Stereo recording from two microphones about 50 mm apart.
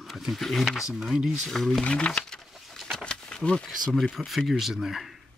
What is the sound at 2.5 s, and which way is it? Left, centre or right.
Bird, centre.